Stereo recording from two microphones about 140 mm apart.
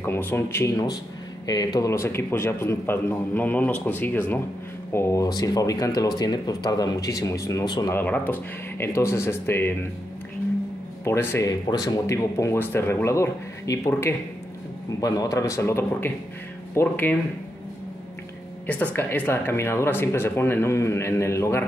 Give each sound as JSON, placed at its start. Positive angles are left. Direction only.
{"t": 0.0, "sound": "speech", "side_deg": 15}
{"t": 7.9, "sound": "speech", "side_deg": 15}
{"t": 11.1, "sound": "speech", "side_deg": 20}
{"t": 18.9, "sound": "speech", "side_deg": 15}